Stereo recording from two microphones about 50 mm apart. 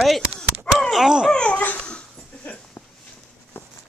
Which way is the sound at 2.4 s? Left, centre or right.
Left.